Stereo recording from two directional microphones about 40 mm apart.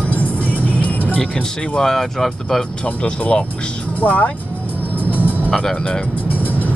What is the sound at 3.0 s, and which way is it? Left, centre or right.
Speech, left.